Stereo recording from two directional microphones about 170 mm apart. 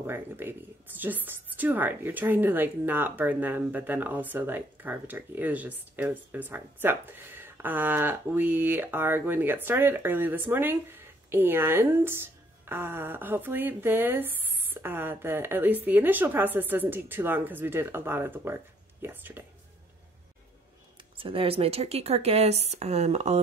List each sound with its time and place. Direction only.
0.0 s a woman's voice: 15° right (ahead or behind)
21.2 s speech: 30° right (ahead or behind)